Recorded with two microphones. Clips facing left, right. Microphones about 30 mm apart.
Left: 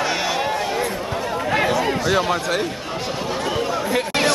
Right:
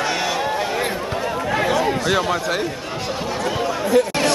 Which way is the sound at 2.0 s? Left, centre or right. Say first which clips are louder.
Even; centre.